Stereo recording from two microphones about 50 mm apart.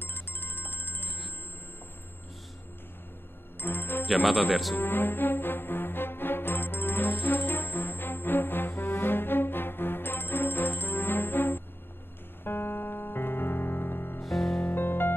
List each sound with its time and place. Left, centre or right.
0.0 s music: left
3.5 s speech: left
4.3 s speech: centre
4.7 s music: left
14.2 s music: centre
14.6 s music: left